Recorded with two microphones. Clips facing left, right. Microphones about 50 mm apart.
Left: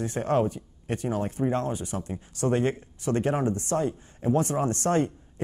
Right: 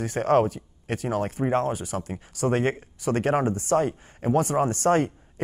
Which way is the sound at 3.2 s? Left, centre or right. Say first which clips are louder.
Right 3 dB; right.